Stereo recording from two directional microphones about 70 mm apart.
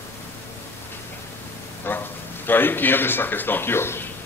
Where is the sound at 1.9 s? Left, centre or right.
Left.